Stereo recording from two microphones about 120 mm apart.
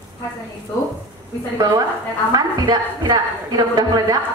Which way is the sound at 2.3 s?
35° right (ahead or behind).